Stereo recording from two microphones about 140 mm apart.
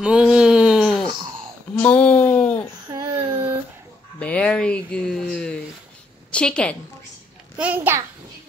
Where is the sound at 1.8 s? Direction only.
10° left (ahead or behind).